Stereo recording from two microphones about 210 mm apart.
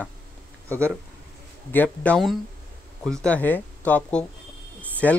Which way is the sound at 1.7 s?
10° left (ahead or behind).